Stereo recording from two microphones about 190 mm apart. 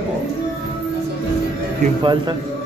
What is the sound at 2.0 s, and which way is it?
Speech, 25° right (ahead or behind).